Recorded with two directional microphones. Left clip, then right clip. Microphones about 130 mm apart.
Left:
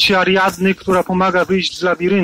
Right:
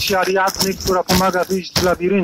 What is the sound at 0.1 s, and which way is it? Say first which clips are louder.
Speech: left 3 dB; 20° left (ahead or behind).